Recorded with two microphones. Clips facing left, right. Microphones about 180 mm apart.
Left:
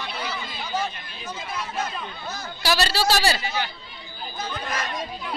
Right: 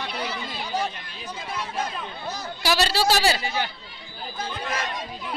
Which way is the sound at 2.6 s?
20° right (ahead or behind).